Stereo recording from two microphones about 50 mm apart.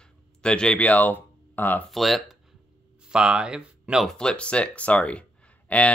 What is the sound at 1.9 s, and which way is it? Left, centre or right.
Speech, centre.